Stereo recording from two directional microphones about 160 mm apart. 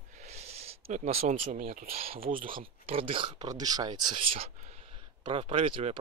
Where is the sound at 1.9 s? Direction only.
40° right (ahead or behind).